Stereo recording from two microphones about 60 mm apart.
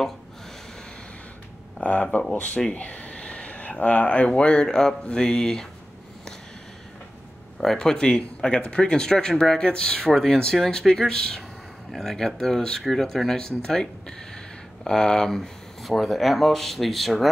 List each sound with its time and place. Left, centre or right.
1.8 s speech: left; by 5.7 s centre
7.6 s speech: centre